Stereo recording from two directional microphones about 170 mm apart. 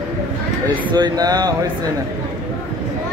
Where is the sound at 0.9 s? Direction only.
25° right (ahead or behind).